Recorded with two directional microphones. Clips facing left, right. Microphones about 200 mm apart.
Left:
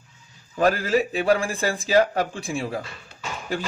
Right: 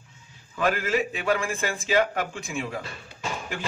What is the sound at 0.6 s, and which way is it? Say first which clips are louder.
A man's voice: left 4 dB; 35° left (ahead or behind).